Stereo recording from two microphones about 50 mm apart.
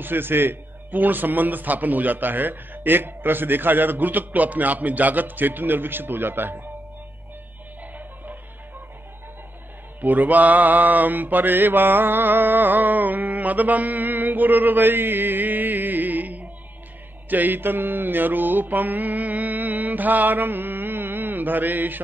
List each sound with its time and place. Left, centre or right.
0.0 s a man's voice: right
10.0 s a man's voice: right